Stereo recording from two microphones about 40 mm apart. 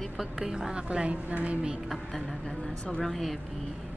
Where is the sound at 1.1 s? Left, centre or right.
Right.